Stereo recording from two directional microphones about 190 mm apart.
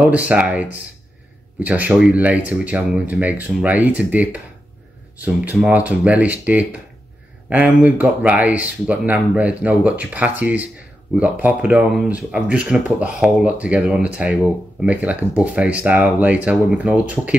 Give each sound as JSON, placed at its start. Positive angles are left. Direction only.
{"t": 0.0, "sound": "speech", "side_deg": -5}